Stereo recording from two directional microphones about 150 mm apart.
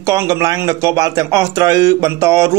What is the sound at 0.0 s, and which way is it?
A man's voice, 20° right (ahead or behind).